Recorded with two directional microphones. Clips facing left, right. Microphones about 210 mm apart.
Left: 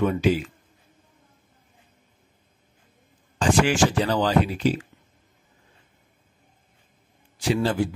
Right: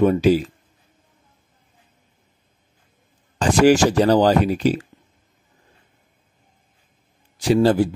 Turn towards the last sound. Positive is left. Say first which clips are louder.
# right 7 dB
turn(degrees=-35)  # may be behind; listen again after turning